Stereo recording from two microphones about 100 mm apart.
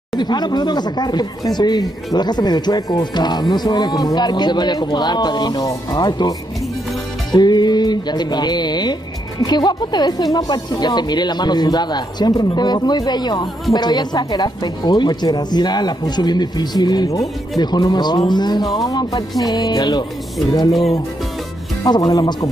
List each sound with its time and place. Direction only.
0.1 s speech: 45° left (ahead or behind)
7.3 s speech: 45° left (ahead or behind)
18.8 s music: 40° left (ahead or behind)
21.8 s music: 40° left (ahead or behind)